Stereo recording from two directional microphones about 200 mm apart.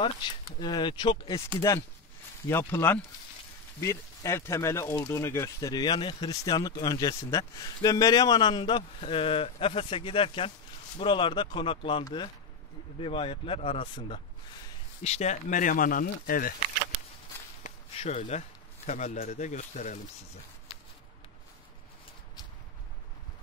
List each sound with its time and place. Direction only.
0.6 s speech: 20° left (ahead or behind); by 16.5 s 45° left (ahead or behind)
17.9 s speech: 35° left (ahead or behind)